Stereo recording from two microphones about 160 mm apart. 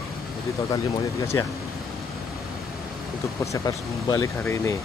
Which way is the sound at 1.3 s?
25° left (ahead or behind).